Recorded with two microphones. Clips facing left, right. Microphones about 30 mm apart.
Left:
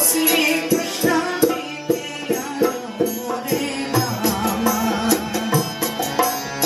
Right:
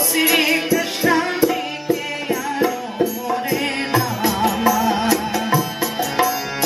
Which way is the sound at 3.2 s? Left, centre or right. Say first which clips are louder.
Right 2 dB; right.